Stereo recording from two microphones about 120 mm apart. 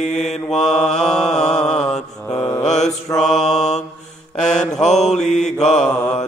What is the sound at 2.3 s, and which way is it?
Mantra, 30° left (ahead or behind).